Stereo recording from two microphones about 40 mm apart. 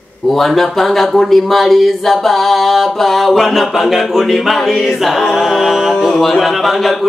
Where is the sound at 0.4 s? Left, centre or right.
Centre.